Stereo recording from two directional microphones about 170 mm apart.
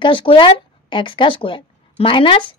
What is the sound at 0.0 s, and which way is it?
A woman's voice, 30° left (ahead or behind).